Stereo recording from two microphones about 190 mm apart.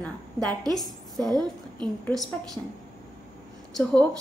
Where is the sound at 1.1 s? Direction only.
20° right (ahead or behind).